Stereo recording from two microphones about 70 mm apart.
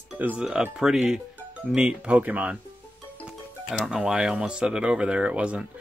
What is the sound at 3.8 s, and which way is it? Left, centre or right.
Speech, centre.